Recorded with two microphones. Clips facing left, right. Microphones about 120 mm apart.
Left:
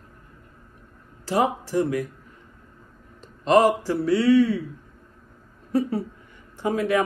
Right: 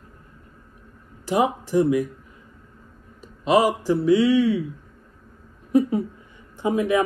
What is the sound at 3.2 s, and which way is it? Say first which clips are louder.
Speech: left 1 dB; 10° right (ahead or behind).